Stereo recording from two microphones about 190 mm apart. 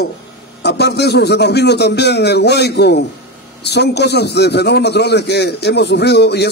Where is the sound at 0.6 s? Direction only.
60° left (ahead or behind).